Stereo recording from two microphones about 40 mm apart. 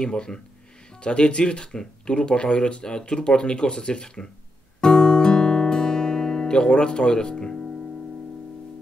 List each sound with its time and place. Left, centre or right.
0.0 s speech: centre
4.7 s music: centre